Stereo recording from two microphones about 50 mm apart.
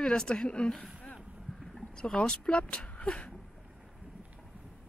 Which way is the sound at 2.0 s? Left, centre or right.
Centre.